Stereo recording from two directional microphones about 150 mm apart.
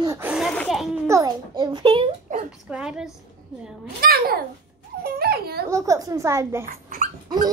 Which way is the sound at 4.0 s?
90° right.